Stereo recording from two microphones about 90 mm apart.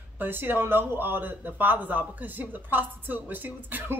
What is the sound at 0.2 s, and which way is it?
A man's voice, 25° right (ahead or behind).